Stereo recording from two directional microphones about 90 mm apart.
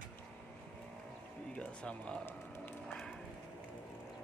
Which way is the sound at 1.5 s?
15° left (ahead or behind).